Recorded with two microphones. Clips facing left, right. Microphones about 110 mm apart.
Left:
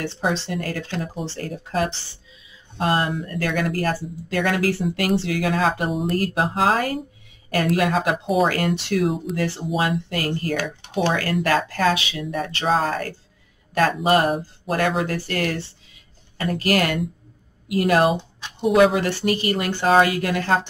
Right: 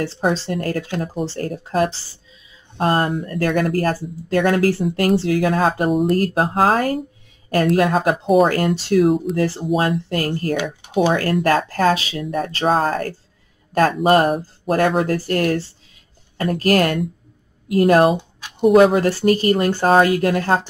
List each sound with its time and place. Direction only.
0.0 s speech: 40° right (ahead or behind)
9.1 s speech: centre (ahead or behind)
9.4 s speech: 40° right (ahead or behind)
10.5 s speech: 15° right (ahead or behind)
11.1 s speech: 45° right (ahead or behind)